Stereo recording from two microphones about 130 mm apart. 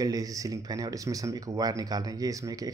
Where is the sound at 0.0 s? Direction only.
30° right (ahead or behind).